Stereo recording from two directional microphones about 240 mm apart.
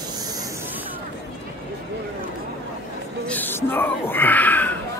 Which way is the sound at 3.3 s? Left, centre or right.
Centre.